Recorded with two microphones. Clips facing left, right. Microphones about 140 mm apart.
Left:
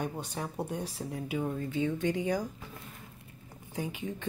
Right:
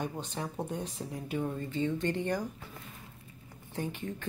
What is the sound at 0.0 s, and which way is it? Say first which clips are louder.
Speech: left 1 dB; 10° left (ahead or behind).